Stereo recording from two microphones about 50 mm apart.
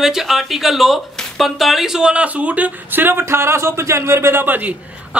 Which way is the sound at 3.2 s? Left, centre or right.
Right.